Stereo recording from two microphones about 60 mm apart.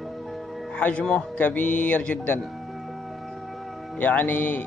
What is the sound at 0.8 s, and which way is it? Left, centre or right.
Music, left.